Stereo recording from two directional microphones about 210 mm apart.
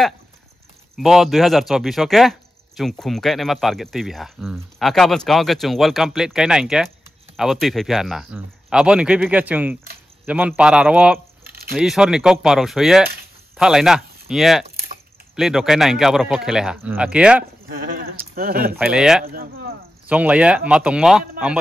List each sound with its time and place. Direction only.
0.9 s speech: centre (ahead or behind)
11.4 s a sound: 45° right (ahead or behind)
11.7 s speech: centre (ahead or behind)
17.9 s a sound: 45° right (ahead or behind)
18.8 s speech: 5° right (ahead or behind)
19.2 s speech: 45° right (ahead or behind)
20.1 s speech: 5° right (ahead or behind)